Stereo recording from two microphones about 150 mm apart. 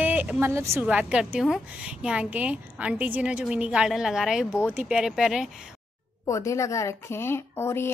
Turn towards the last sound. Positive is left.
turn(degrees=15)  # may be behind; listen again after turning